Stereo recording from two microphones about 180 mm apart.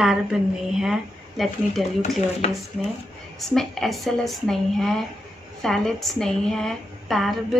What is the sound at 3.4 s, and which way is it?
A woman's voice, centre (ahead or behind).